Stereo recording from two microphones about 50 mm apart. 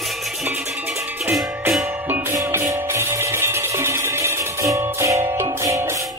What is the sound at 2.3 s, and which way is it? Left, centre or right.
Music, right.